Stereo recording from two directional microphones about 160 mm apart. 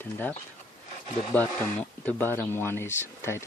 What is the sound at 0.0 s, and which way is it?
Speech, 10° left (ahead or behind).